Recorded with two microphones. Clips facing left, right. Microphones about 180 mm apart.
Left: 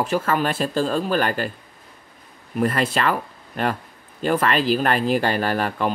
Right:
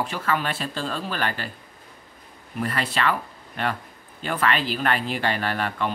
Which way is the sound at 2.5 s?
45° left (ahead or behind).